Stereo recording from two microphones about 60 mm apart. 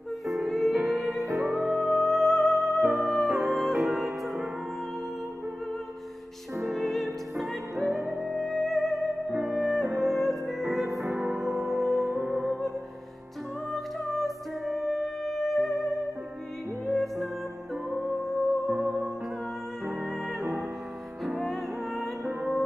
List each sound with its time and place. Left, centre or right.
0.5 s music: centre
1.4 s music: centre
2.0 s music: centre
6.7 s music: centre
8.1 s music: centre
8.4 s music: centre
11.1 s music: right
11.8 s music: centre
12.1 s music: right
13.7 s music: centre
16.9 s music: centre
18.7 s music: centre
20.1 s music: centre